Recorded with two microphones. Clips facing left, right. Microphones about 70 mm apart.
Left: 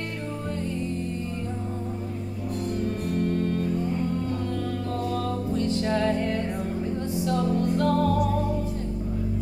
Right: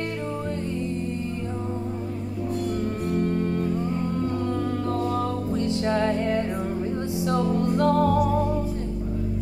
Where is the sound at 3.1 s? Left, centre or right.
Right.